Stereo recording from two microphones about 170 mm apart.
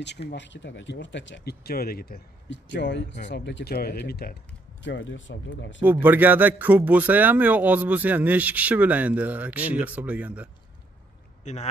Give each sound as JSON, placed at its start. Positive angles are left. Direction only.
{"t": 0.3, "sound": "speech", "side_deg": 90}
{"t": 4.8, "sound": "speech", "side_deg": 90}
{"t": 5.8, "sound": "a man's voice", "side_deg": -10}
{"t": 11.4, "sound": "a man's voice", "side_deg": 40}